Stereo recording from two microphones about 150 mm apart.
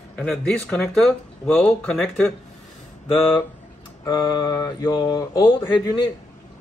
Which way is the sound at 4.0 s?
25° left (ahead or behind).